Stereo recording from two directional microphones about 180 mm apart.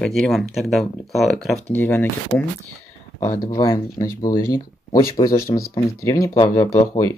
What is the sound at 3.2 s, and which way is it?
Speech, 50° left (ahead or behind).